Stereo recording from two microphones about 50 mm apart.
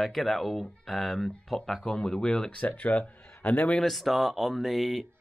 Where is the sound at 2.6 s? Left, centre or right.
Left.